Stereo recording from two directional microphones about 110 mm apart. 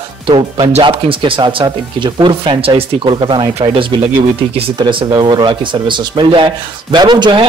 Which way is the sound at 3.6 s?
65° right (ahead or behind).